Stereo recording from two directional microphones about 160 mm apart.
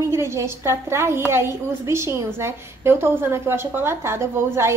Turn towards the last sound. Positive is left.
turn(degrees=-15)  # may be behind; listen again after turning